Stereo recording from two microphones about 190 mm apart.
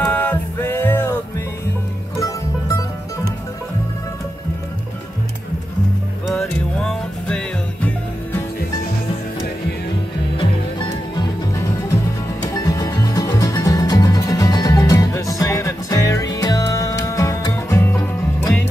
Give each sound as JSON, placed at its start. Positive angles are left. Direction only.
{"t": 0.0, "sound": "music", "side_deg": 10}
{"t": 6.2, "sound": "music", "side_deg": 5}
{"t": 10.3, "sound": "music", "side_deg": 25}